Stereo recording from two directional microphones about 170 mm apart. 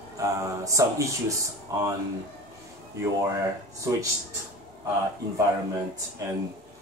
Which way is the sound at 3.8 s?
20° right (ahead or behind).